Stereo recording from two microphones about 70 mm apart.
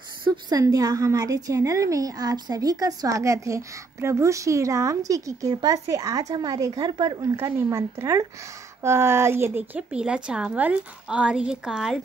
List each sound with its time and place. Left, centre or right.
0.3 s a woman's voice: right
6.3 s speech: right
7.3 s speech: right
9.8 s a woman's voice: centre